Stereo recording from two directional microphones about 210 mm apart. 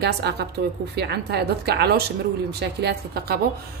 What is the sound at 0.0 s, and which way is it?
A woman's voice, 50° right (ahead or behind).